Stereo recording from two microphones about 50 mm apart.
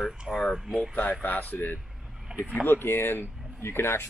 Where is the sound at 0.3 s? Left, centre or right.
Centre.